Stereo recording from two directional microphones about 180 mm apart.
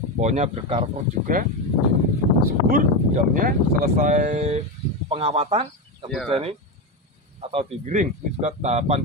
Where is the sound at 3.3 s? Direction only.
50° right (ahead or behind).